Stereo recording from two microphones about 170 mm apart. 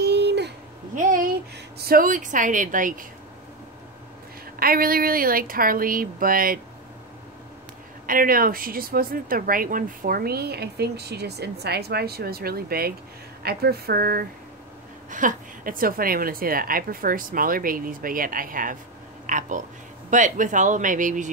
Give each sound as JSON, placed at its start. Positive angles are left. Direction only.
{"t": 0.0, "sound": "a sound", "side_deg": -80}
{"t": 0.9, "sound": "a sound", "side_deg": -50}
{"t": 1.8, "sound": "a woman's voice", "side_deg": -60}
{"t": 4.6, "sound": "speech", "side_deg": -60}
{"t": 8.1, "sound": "speech", "side_deg": -55}
{"t": 15.0, "sound": "a woman's voice", "side_deg": -50}